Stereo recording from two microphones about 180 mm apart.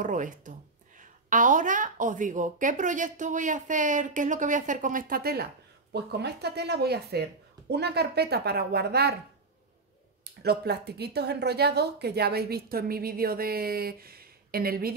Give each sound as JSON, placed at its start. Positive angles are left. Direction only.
{"t": 0.0, "sound": "a woman's voice", "side_deg": -45}
{"t": 10.4, "sound": "a woman's voice", "side_deg": -65}